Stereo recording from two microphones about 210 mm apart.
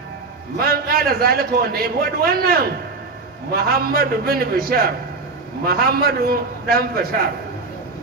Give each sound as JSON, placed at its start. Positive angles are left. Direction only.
{"t": 0.6, "sound": "a man's voice", "side_deg": -45}